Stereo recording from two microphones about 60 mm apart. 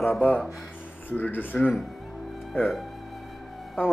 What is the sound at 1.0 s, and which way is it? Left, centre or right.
Speech, left.